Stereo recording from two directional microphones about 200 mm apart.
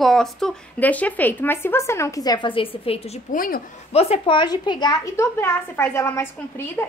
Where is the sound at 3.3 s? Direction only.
45° left (ahead or behind).